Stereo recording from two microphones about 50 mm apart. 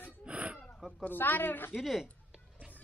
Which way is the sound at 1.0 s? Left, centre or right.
Left.